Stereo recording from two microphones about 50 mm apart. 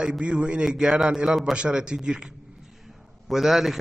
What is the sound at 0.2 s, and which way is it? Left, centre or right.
A man's voice, centre.